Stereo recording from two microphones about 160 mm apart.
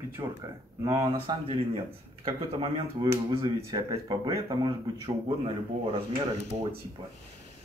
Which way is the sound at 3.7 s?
25° right (ahead or behind).